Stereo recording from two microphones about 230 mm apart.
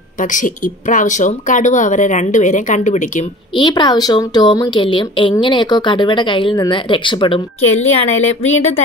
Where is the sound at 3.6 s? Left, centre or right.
Centre.